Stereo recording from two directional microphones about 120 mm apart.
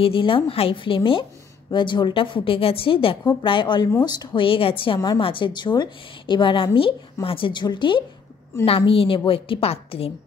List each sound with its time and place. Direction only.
0.0 s a woman's voice: 50° left (ahead or behind)
4.5 s a woman's voice: 50° left (ahead or behind)
8.6 s a woman's voice: 50° left (ahead or behind)